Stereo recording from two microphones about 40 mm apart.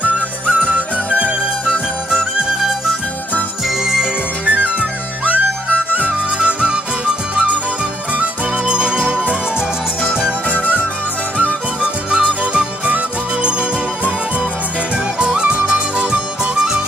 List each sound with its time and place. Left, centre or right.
0.0 s music: right
3.6 s music: centre
4.5 s music: right
11.8 s music: right
15.1 s music: right